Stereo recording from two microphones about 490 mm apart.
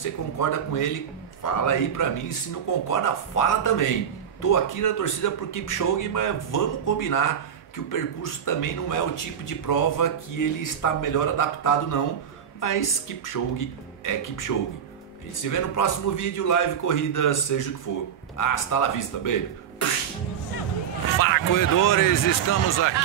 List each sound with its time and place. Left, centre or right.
0.4 s a man's voice: left
15.5 s a man's voice: left
21.2 s a man's voice: left